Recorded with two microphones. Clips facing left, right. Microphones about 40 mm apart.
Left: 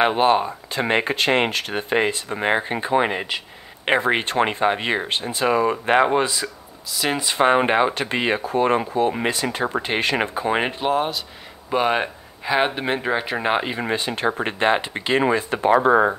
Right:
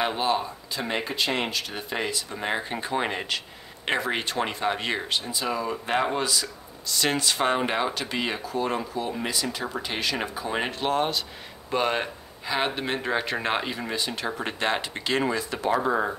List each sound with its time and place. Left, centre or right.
0.0 s speech: left
2.5 s speech: left
5.9 s speech: left
6.9 s speech: centre
7.3 s speech: left
10.6 s speech: left
10.9 s speech: centre
11.7 s speech: centre
13.7 s speech: left
14.6 s speech: left